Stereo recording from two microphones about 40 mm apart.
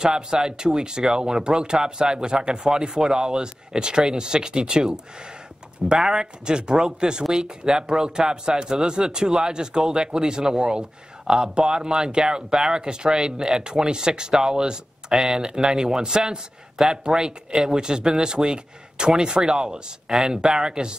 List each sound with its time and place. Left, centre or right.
0.0 s speech: centre
6.0 s speech: centre